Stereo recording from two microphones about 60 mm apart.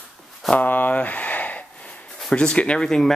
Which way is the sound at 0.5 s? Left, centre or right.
Left.